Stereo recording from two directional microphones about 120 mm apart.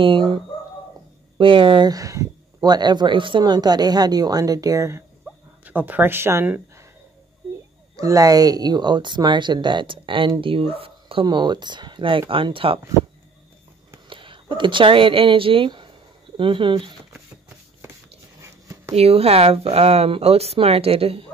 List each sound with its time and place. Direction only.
0.0 s speech: 40° right (ahead or behind)
1.4 s speech: 45° right (ahead or behind); by 5.0 s 25° right (ahead or behind)
5.2 s a sound: 15° right (ahead or behind)
7.9 s speech: 30° right (ahead or behind); by 11.2 s 50° right (ahead or behind)
11.2 s speech: 35° right (ahead or behind)
14.0 s speech: 45° right (ahead or behind)
18.4 s writing: 25° right (ahead or behind)
18.9 s speech: 60° right (ahead or behind)